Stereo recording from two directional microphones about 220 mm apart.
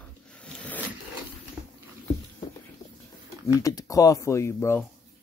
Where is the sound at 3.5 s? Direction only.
15° left (ahead or behind).